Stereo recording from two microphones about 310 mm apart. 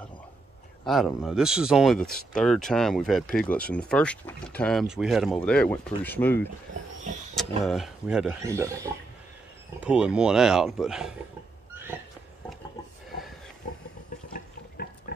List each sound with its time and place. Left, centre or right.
0.8 s speech: centre
9.8 s speech: centre
14.3 s water: left